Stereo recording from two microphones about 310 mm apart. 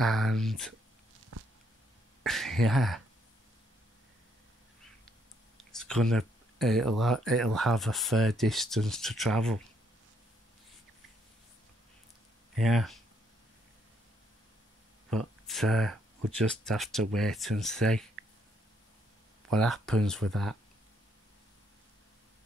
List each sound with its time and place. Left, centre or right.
0.0 s speech: centre
1.3 s a sound: right
2.2 s speech: centre
5.7 s speech: centre
12.5 s speech: centre
15.0 s speech: centre
19.5 s speech: centre